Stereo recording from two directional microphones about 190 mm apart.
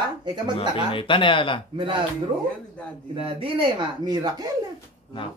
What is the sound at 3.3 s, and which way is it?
Speech, 30° right (ahead or behind).